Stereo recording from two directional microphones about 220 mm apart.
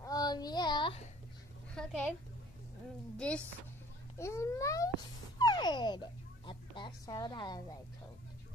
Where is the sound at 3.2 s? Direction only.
5° left (ahead or behind).